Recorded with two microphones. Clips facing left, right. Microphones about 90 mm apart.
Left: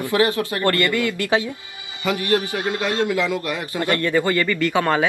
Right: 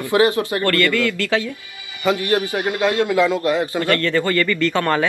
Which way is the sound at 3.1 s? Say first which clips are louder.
Right 5 dB; 25° right (ahead or behind).